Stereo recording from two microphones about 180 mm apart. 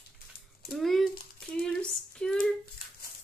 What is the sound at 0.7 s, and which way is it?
A child's voice, centre (ahead or behind).